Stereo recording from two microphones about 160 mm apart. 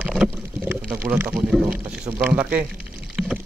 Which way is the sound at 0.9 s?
15° right (ahead or behind).